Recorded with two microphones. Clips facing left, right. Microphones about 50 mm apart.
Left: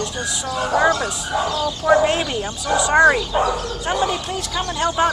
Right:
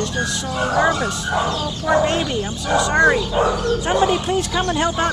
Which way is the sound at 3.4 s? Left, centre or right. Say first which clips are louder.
Right 3 dB; centre.